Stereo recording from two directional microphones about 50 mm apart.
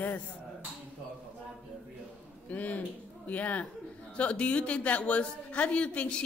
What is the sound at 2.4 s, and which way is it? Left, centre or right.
A woman's voice, left.